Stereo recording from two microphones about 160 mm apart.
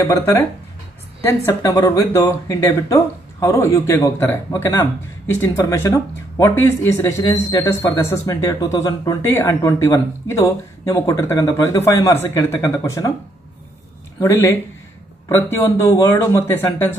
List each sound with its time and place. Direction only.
0.1 s a man's voice: 15° left (ahead or behind)
14.2 s a man's voice: 15° left (ahead or behind)